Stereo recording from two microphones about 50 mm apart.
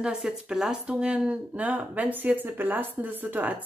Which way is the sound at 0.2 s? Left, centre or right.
Centre.